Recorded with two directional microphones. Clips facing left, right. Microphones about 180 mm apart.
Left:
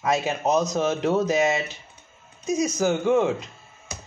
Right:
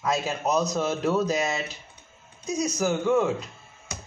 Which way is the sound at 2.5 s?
20° left (ahead or behind).